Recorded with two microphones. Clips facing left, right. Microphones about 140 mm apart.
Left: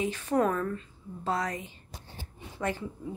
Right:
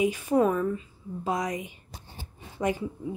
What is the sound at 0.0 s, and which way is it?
Speech, 10° right (ahead or behind).